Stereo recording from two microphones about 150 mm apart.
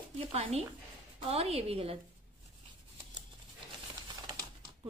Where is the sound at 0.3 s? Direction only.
45° right (ahead or behind).